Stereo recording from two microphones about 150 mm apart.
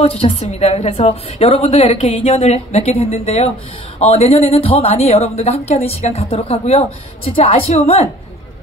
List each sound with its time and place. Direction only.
0.0 s a woman's voice: 40° left (ahead or behind)